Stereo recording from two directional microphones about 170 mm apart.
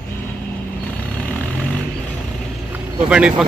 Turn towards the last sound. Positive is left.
turn(degrees=-5)  # may be behind; listen again after turning